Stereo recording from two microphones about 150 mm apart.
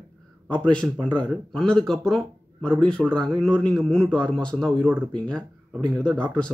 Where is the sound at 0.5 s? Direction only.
5° left (ahead or behind).